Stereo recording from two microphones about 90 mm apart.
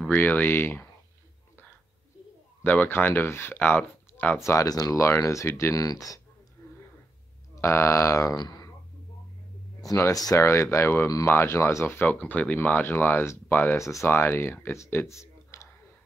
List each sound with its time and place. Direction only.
0.1 s speech: 20° left (ahead or behind)
2.6 s speech: 20° left (ahead or behind)
4.4 s speech: 35° left (ahead or behind)
6.6 s a sound: 25° left (ahead or behind)
7.6 s speech: 30° left (ahead or behind); by 8.6 s 50° left (ahead or behind)
9.8 s speech: 35° left (ahead or behind)
12.1 s speech: 15° left (ahead or behind)
13.7 s speech: 35° left (ahead or behind)